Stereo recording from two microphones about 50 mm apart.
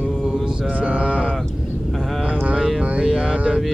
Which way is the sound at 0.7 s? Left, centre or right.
Right.